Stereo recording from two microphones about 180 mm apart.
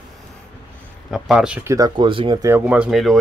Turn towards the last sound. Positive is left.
turn(degrees=0)  # may be behind; listen again after turning